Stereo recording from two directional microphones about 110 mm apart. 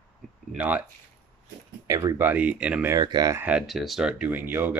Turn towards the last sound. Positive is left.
turn(degrees=-15)  # may be behind; listen again after turning